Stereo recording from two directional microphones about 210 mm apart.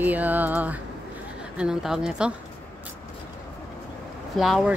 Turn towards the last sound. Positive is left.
turn(degrees=0)  # may be behind; listen again after turning